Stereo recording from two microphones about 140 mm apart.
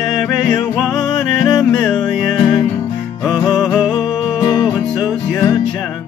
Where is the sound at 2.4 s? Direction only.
25° left (ahead or behind).